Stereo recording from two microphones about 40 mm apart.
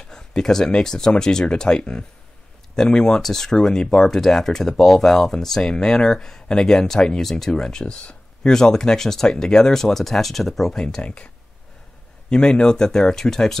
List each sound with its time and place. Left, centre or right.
0.1 s speech: centre
7.8 s speech: left; by 10.8 s centre
10.8 s speech: centre
12.3 s speech: left